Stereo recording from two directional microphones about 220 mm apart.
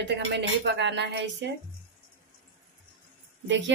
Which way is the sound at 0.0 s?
55° right (ahead or behind).